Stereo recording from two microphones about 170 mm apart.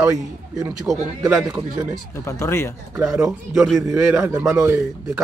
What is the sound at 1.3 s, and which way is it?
Speech, 5° right (ahead or behind).